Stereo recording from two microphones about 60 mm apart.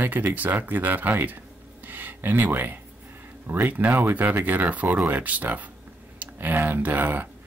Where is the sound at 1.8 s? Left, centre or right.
Right.